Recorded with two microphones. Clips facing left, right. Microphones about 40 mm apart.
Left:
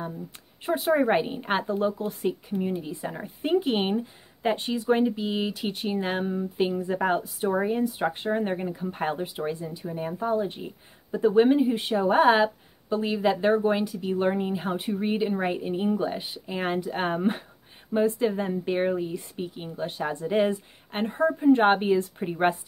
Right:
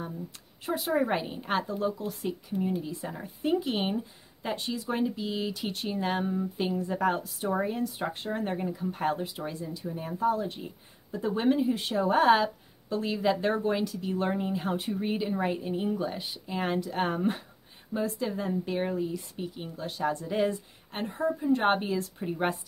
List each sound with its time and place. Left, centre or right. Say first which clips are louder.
0.7 s speech: left 5 dB; left
20.9 s speech: left 5 dB; left